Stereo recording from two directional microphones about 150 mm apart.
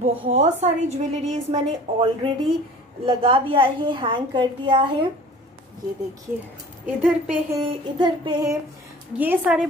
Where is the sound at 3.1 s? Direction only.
40° right (ahead or behind).